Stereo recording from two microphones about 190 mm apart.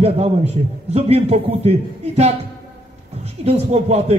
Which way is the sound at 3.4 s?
35° right (ahead or behind).